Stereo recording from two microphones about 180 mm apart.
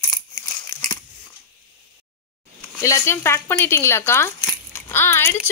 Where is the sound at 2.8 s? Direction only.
15° left (ahead or behind).